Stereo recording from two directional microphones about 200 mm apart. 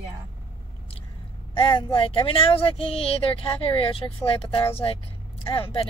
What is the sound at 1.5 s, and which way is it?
Speech, 25° left (ahead or behind).